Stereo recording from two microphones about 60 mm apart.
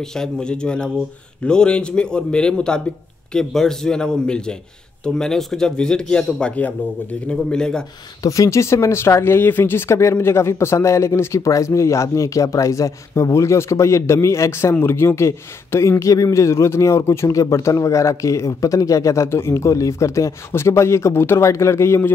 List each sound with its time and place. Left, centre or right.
0.1 s speech: centre
7.2 s speech: centre
8.2 s a man's voice: left
19.2 s speech: left